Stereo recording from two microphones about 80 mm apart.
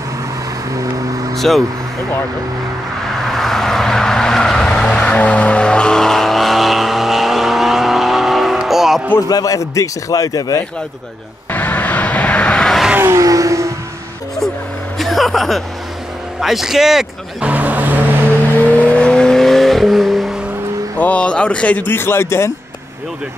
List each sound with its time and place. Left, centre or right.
1.3 s speech: centre
3.2 s vehicle: centre
9.3 s a man's voice: left
11.5 s vehicle: left
12.6 s vehicle: centre
13.1 s vehicle: right
15.0 s vehicle: centre
16.3 s speech: centre
17.5 s vehicle: centre
18.6 s vehicle: centre
21.0 s speech: centre; by 22.5 s left